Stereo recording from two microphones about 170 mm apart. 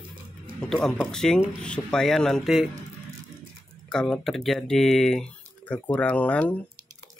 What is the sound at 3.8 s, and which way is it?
Speech, 5° left (ahead or behind).